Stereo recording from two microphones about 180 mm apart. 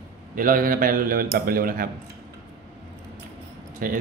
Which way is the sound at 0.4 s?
50° right (ahead or behind).